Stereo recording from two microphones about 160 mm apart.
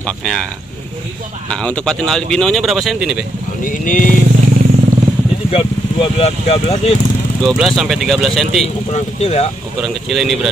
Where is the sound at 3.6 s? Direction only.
55° left (ahead or behind).